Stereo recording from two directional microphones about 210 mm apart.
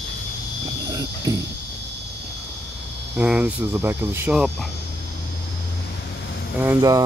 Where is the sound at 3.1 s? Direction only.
5° right (ahead or behind).